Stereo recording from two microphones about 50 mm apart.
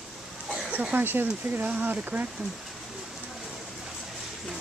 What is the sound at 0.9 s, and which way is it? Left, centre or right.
Speech, right.